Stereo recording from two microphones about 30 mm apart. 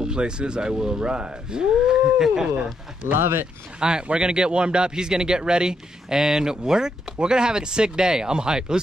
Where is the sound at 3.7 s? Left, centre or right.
Right.